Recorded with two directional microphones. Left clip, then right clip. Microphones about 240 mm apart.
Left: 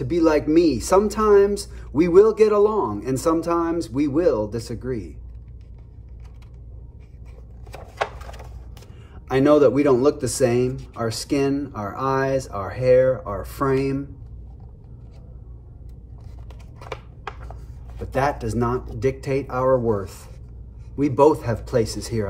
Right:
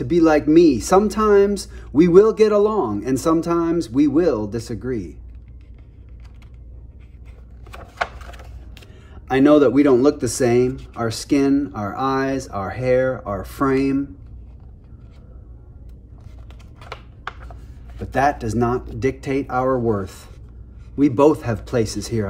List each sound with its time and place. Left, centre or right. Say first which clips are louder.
0.1 s speech: right 3 dB; right
9.3 s speech: right 2 dB; right
18.0 s speech: right 4 dB; right
19.7 s speech: left 4 dB; right
20.0 s speech: right 2 dB; right
21.3 s speech: right 1 dB; right
21.7 s speech: right 1 dB; right